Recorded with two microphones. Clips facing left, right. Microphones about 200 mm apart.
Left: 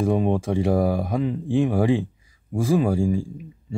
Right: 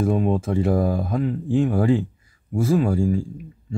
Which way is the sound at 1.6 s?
15° left (ahead or behind).